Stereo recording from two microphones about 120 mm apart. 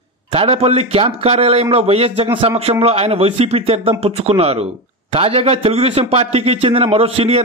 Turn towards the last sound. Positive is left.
turn(degrees=-55)  # may be behind; listen again after turning